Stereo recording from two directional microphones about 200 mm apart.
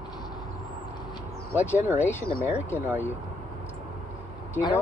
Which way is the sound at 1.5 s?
10° right (ahead or behind).